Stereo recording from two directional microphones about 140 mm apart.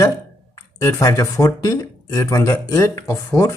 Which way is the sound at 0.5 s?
25° left (ahead or behind).